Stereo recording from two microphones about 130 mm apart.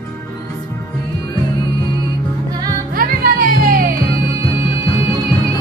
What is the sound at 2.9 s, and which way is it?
Music, 90° right.